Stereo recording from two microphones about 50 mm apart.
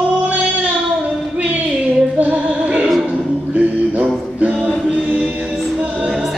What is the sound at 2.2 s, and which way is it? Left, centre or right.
Music, right.